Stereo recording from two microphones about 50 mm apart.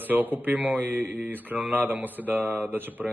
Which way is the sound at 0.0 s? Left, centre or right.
Right.